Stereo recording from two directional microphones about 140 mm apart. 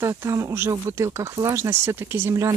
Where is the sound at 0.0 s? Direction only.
20° right (ahead or behind).